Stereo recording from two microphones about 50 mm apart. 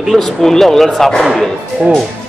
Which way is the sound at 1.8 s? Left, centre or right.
Centre.